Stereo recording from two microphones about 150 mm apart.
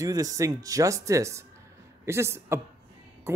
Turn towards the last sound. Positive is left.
turn(degrees=-20)  # may be behind; listen again after turning